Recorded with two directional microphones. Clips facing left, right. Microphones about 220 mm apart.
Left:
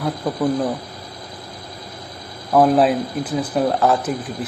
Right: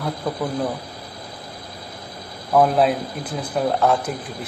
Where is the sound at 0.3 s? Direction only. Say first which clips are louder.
Even; 5° left (ahead or behind).